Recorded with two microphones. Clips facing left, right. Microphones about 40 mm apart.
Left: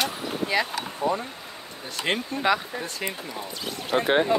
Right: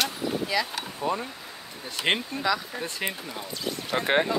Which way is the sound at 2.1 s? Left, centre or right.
Right.